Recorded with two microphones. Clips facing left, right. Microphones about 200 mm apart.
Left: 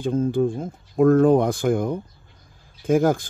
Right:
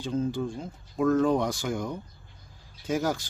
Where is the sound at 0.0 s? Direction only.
50° left (ahead or behind).